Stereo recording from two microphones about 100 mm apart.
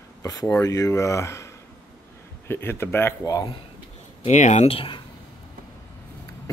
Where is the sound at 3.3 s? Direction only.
35° left (ahead or behind).